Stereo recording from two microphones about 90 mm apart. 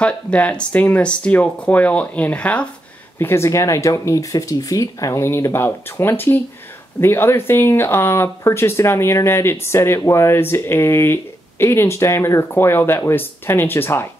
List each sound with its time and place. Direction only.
0.0 s speech: 15° left (ahead or behind)
3.2 s speech: 30° left (ahead or behind)